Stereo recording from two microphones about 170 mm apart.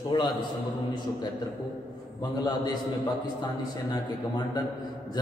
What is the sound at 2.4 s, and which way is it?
Mantra, 25° left (ahead or behind).